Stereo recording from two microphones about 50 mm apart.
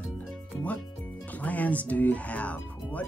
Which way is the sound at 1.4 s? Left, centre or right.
Left.